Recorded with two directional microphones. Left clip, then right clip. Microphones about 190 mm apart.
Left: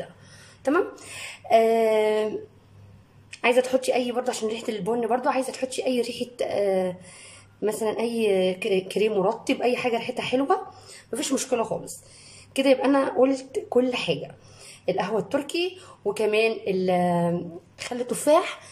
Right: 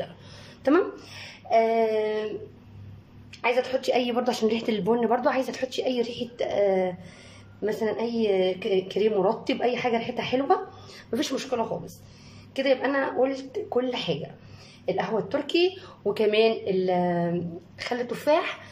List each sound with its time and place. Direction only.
1.0 s speech: 15° left (ahead or behind)
3.3 s speech: 20° left (ahead or behind)